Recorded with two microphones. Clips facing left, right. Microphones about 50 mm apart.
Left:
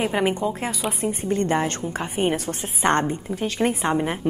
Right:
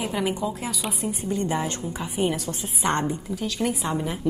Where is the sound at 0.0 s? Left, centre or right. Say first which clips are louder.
Left 4 dB; left.